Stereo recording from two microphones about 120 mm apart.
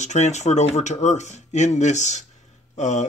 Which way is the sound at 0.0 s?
75° left (ahead or behind).